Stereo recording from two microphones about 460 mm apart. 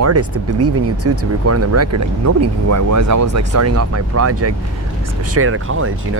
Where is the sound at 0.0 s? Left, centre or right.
Right.